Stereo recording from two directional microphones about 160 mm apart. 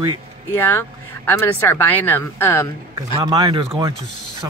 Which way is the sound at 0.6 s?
10° left (ahead or behind).